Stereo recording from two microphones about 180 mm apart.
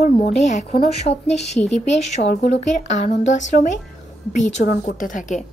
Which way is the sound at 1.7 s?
40° left (ahead or behind).